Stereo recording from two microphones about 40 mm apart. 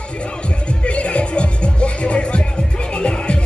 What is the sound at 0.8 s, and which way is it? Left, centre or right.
Music, left.